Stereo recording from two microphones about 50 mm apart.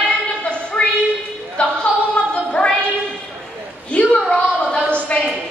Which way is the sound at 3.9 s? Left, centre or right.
Centre.